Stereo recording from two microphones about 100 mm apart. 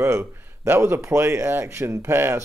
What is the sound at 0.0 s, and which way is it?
Speech, 25° right (ahead or behind).